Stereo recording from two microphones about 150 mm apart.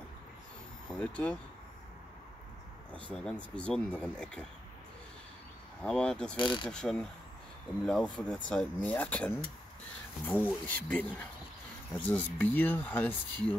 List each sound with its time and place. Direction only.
0.8 s speech: 10° left (ahead or behind)
2.9 s speech: 10° left (ahead or behind)
5.8 s speech: 5° left (ahead or behind)
6.3 s speech: 30° left (ahead or behind)
6.7 s speech: 5° left (ahead or behind)